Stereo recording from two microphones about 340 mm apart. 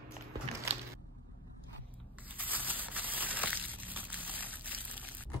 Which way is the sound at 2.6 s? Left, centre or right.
Centre.